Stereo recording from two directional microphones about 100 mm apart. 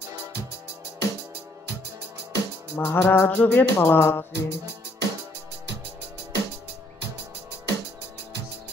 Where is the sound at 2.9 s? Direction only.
20° left (ahead or behind).